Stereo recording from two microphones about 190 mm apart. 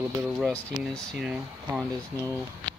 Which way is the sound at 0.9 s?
Centre (ahead or behind).